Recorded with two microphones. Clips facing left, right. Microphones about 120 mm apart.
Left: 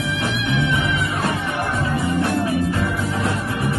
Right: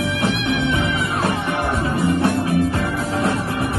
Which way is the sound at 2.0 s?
25° right (ahead or behind).